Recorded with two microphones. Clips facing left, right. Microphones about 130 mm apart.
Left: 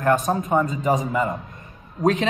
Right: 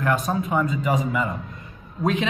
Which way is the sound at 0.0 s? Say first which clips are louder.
Left 3 dB; 40° left (ahead or behind).